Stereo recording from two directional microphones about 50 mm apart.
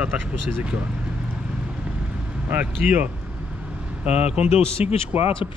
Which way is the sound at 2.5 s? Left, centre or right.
Right.